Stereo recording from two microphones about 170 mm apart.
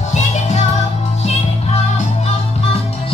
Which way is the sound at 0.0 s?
45° left (ahead or behind).